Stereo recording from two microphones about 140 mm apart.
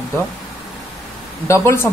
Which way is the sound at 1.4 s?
20° left (ahead or behind).